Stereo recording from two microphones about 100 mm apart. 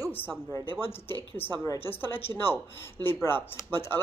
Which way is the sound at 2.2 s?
25° left (ahead or behind).